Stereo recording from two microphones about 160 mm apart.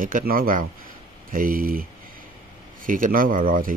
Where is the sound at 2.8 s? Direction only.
60° right (ahead or behind).